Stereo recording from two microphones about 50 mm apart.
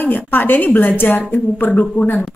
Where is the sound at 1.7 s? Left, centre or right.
Left.